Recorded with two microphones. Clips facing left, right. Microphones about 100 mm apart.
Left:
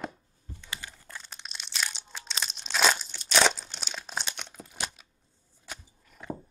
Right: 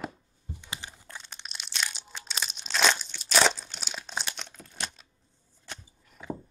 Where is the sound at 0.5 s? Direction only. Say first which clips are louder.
Left 1 dB; 20° right (ahead or behind).